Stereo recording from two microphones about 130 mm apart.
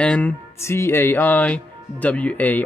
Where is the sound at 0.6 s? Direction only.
20° left (ahead or behind).